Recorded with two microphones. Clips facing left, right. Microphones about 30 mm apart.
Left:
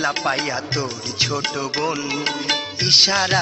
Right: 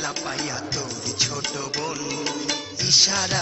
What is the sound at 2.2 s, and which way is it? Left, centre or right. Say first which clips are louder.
Music: left 5 dB; left.